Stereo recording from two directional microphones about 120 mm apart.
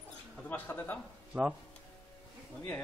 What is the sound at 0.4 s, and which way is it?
Speech, 15° left (ahead or behind).